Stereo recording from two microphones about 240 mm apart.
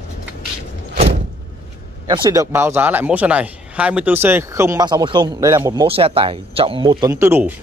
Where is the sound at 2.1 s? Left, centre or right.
Centre.